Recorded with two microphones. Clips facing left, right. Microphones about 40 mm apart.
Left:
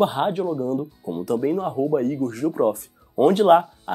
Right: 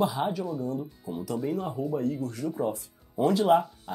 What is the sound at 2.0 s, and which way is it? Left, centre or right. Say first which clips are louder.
Speech: left 7 dB; left.